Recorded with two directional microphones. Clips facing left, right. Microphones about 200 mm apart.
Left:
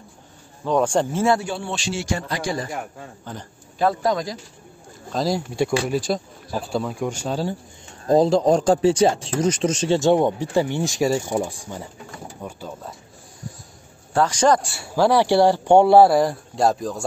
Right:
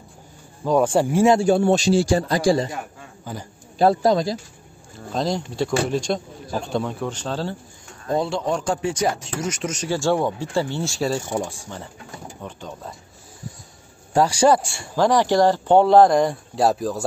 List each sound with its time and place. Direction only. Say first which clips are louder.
0.7 s speech: right 2 dB; 10° right (ahead or behind)
1.4 s a man's voice: right 11 dB; 45° right (ahead or behind)
3.3 s speech: right 3 dB; 5° right (ahead or behind)
3.7 s a man's voice: right 4 dB; 30° right (ahead or behind)
5.1 s speech: left 1 dB; 5° left (ahead or behind)
8.1 s speech: left 7 dB; 35° left (ahead or behind); by 12.9 s 5° left (ahead or behind)
14.1 s a man's voice: right 1 dB; 10° right (ahead or behind)